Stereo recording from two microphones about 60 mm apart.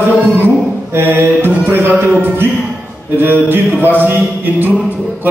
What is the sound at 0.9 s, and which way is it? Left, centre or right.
A man's voice, right.